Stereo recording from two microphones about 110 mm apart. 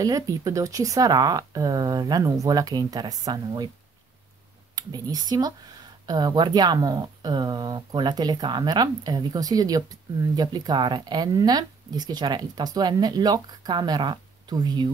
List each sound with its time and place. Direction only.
0.0 s speech: 35° right (ahead or behind)
4.7 s speech: 35° right (ahead or behind)